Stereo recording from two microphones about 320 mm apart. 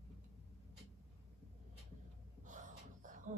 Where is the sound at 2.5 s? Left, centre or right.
Right.